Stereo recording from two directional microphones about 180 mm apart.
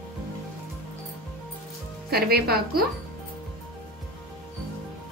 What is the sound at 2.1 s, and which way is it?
Speech, 60° right (ahead or behind).